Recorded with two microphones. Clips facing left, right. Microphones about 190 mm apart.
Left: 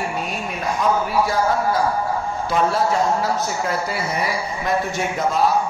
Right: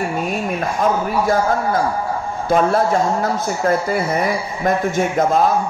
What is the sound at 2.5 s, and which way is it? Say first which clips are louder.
Speech: right 4 dB; 50° right (ahead or behind).